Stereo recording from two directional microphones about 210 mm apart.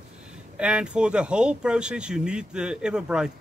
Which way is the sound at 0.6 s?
5° right (ahead or behind).